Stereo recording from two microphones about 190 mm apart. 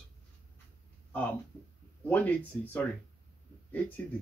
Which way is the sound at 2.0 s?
10° left (ahead or behind).